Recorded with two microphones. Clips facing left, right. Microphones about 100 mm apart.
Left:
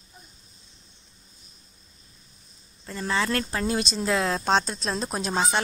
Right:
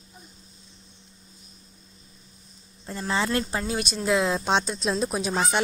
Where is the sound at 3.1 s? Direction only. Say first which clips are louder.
Right 1 dB; 25° right (ahead or behind).